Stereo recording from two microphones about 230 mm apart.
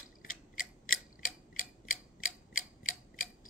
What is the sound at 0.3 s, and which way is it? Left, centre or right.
Tick-tock, left.